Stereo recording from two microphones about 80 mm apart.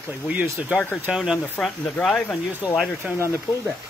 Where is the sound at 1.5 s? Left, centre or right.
Centre.